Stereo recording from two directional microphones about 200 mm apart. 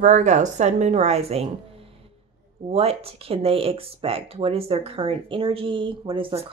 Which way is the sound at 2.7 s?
30° right (ahead or behind).